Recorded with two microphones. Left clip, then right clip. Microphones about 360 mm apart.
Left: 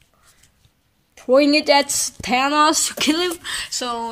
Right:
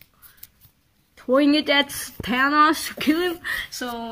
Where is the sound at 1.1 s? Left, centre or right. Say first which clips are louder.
Left 4 dB; left.